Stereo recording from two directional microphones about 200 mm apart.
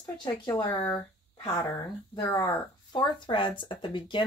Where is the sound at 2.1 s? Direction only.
20° left (ahead or behind).